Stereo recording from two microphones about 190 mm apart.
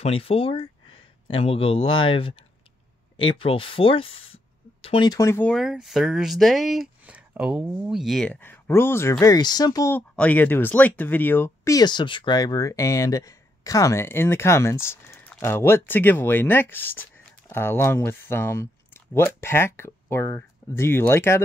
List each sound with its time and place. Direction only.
0.0 s speech: 30° left (ahead or behind); by 5.5 s 15° left (ahead or behind)
5.5 s speech: centre (ahead or behind)